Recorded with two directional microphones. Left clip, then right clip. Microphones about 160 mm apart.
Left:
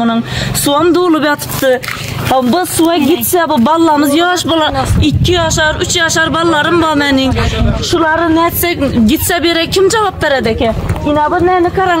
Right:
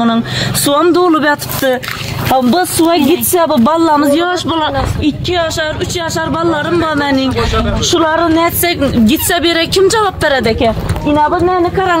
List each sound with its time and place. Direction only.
0.7 s a woman's voice: 15° left (ahead or behind); by 4.0 s 35° left (ahead or behind)
4.0 s a woman's voice: 65° left (ahead or behind); by 5.1 s 90° left
5.3 s speech: 45° left (ahead or behind)
5.9 s a woman's voice: 20° left (ahead or behind)
7.0 s a woman's voice: 85° left
7.9 s a woman's voice: 5° left (ahead or behind)
11.2 s a woman's voice: 20° left (ahead or behind)